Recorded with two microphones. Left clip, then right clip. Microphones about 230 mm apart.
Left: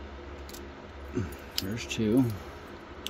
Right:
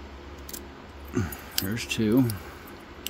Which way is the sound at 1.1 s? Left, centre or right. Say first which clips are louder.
Right 4 dB; right.